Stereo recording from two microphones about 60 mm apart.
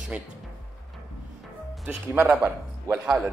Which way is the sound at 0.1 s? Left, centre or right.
Centre.